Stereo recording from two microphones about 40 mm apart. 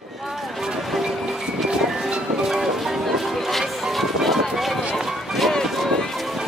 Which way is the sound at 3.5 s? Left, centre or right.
Centre.